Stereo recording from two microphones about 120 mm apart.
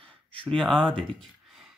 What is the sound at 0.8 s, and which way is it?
Speech, 45° right (ahead or behind).